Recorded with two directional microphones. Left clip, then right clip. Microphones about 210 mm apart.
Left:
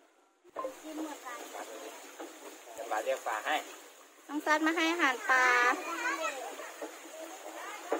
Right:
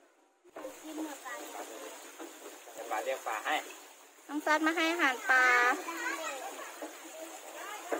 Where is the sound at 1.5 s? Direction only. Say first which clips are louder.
Even; 50° right (ahead or behind).